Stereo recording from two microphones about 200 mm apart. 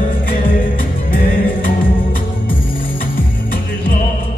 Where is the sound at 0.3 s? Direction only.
45° left (ahead or behind).